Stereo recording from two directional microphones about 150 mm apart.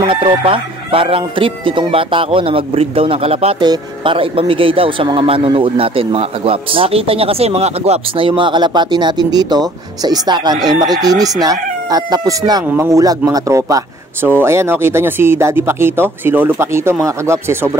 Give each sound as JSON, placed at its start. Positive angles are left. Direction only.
{"t": 0.1, "sound": "speech", "side_deg": -35}
{"t": 3.5, "sound": "speech", "side_deg": -30}